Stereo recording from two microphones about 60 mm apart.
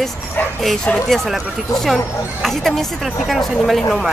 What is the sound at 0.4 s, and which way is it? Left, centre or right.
Speech, left.